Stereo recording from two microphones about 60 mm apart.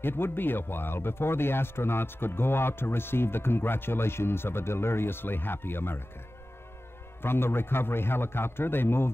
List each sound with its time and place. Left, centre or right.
0.0 s speech: left
7.2 s speech: left